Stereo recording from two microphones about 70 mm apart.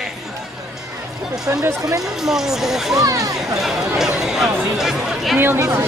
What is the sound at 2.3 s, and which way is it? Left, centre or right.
Speech, centre.